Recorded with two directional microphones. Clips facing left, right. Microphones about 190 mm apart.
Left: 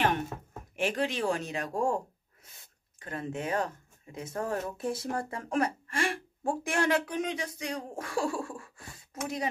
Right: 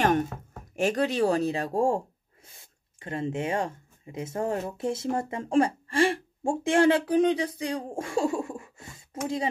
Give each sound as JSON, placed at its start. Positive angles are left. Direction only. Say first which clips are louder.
{"t": 0.7, "sound": "speech", "louder": "right 6 dB", "side_deg": -40}